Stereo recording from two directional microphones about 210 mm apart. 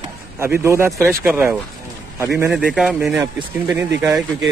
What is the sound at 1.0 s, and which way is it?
Speech, centre (ahead or behind).